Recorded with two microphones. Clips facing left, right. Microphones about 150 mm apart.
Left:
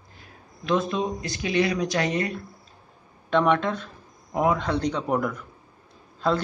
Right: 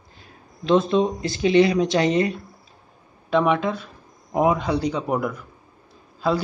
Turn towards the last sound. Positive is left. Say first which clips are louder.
# right 2 dB
turn(degrees=-5)  # may be behind; listen again after turning